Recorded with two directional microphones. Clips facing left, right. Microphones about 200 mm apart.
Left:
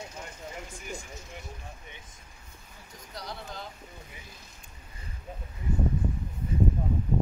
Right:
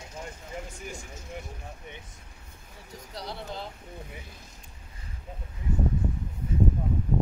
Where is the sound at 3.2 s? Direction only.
30° right (ahead or behind).